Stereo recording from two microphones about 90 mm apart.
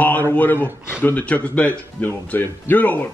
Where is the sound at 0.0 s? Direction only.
20° left (ahead or behind).